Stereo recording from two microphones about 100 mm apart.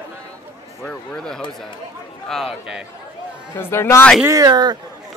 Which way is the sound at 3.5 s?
25° left (ahead or behind).